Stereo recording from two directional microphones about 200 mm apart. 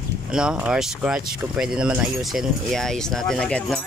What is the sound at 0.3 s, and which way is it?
Speech, 5° right (ahead or behind).